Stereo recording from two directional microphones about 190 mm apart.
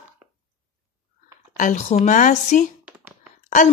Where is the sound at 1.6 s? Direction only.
40° left (ahead or behind).